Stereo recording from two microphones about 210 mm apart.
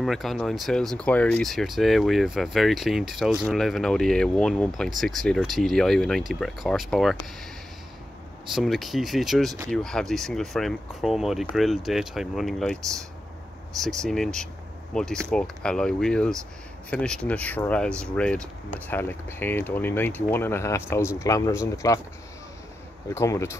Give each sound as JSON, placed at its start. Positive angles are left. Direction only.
{"t": 0.0, "sound": "speech", "side_deg": 0}
{"t": 8.5, "sound": "speech", "side_deg": 0}
{"t": 23.0, "sound": "speech", "side_deg": 15}